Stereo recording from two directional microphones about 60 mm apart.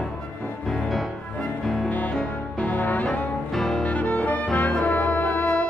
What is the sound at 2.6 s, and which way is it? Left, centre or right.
Brass instrument, left.